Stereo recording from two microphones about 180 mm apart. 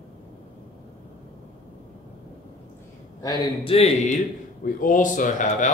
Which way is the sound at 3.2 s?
25° left (ahead or behind).